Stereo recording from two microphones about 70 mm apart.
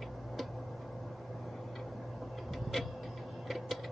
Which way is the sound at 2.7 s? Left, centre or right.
Centre.